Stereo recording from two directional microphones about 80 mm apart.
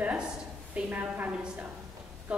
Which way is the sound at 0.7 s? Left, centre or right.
Centre.